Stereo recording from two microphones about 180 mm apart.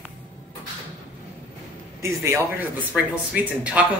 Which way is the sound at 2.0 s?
15° right (ahead or behind).